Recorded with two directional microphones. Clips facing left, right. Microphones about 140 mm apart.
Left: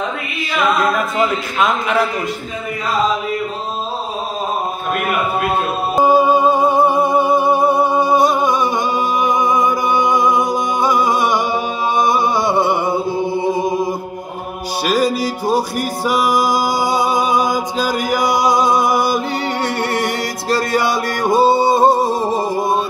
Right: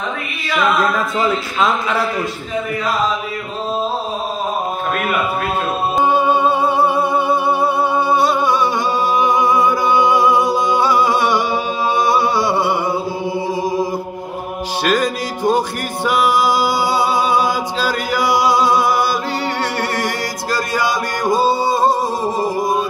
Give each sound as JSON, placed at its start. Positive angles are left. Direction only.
{"t": 5.9, "sound": "music", "side_deg": 10}
{"t": 6.4, "sound": "humming", "side_deg": 15}
{"t": 9.2, "sound": "music", "side_deg": 15}
{"t": 11.1, "sound": "humming", "side_deg": 15}
{"t": 12.0, "sound": "a sound", "side_deg": 20}
{"t": 14.9, "sound": "music", "side_deg": 10}
{"t": 16.1, "sound": "music", "side_deg": 40}
{"t": 16.8, "sound": "a capella", "side_deg": 15}
{"t": 18.4, "sound": "music", "side_deg": 20}